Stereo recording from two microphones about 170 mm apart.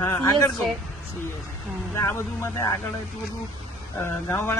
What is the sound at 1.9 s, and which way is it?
Speech, 15° left (ahead or behind).